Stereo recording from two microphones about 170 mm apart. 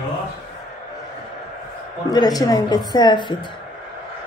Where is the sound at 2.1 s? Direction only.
25° left (ahead or behind).